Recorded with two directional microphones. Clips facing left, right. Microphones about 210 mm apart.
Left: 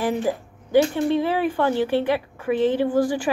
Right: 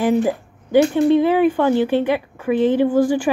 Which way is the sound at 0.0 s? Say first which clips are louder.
Right 6 dB; 25° right (ahead or behind).